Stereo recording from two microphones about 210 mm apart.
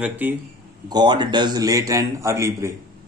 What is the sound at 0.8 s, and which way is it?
Speech, 20° right (ahead or behind).